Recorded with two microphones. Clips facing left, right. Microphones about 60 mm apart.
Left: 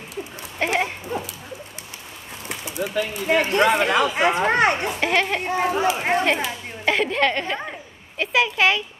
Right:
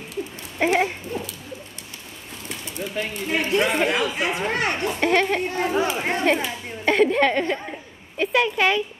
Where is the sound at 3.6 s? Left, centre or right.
Left.